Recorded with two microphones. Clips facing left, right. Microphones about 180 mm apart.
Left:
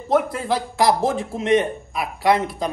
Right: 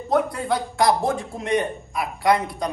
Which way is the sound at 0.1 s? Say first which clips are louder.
Left 2 dB; centre (ahead or behind).